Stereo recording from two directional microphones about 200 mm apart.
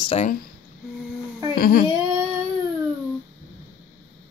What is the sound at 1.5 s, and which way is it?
Speech, 45° left (ahead or behind).